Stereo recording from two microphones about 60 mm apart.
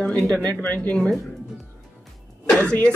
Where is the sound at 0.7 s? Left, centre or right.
Left.